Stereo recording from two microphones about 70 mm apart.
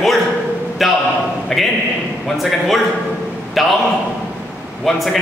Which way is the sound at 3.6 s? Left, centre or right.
Centre.